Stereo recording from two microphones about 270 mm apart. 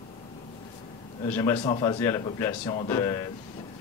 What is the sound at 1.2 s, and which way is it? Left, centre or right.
Speech, centre.